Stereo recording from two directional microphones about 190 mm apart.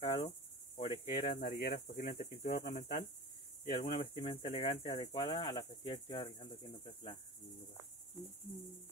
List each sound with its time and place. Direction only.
0.0 s insect: 15° left (ahead or behind)
0.7 s cricket: 25° left (ahead or behind)
1.2 s cricket: 50° left (ahead or behind)
4.2 s cricket: 30° left (ahead or behind)